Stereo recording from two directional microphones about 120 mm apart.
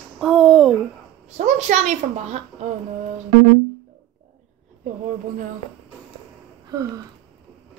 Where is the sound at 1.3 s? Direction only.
80° right.